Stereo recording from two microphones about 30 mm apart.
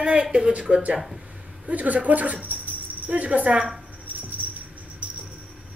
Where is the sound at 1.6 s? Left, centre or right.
Right.